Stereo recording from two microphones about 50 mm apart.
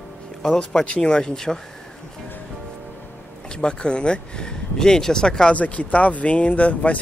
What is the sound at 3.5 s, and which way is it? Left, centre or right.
Speech, centre.